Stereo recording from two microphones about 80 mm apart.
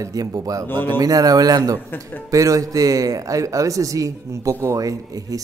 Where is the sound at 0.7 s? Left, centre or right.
Left.